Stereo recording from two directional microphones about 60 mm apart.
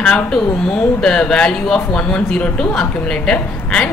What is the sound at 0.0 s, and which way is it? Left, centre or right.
Speech, centre.